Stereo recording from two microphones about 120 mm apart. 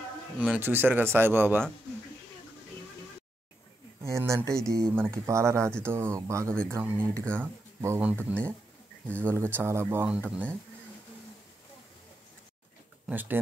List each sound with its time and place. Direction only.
0.4 s a man's voice: 15° right (ahead or behind)
4.0 s a man's voice: 25° right (ahead or behind)
9.2 s speech: 20° right (ahead or behind)
10.0 s a man's voice: 10° right (ahead or behind)
13.1 s a man's voice: 15° right (ahead or behind)